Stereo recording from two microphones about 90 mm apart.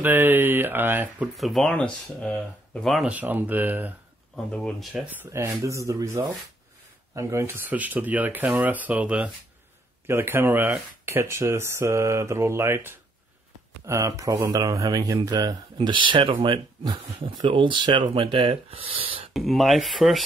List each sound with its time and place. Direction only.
0.0 s speech: 20° right (ahead or behind)
1.3 s speech: centre (ahead or behind)
1.7 s speech: 15° left (ahead or behind)
3.1 s speech: 20° right (ahead or behind)
4.5 s speech: 10° left (ahead or behind)
5.3 s speech: 30° right (ahead or behind); by 9.3 s 15° right (ahead or behind)
10.0 s speech: 25° right (ahead or behind); by 19.2 s 90° right
19.3 s speech: centre (ahead or behind)